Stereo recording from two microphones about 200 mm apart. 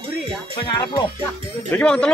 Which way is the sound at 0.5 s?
20° left (ahead or behind).